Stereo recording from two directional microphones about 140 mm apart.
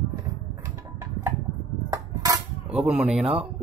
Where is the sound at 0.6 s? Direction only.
20° right (ahead or behind).